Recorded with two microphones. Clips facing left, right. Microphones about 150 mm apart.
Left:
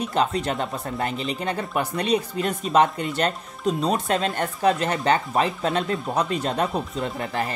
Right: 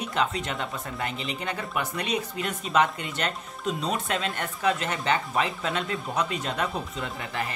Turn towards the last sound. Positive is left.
turn(degrees=35)  # may be behind; listen again after turning